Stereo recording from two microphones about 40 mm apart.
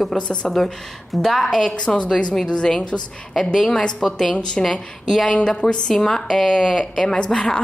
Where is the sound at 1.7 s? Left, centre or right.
Left.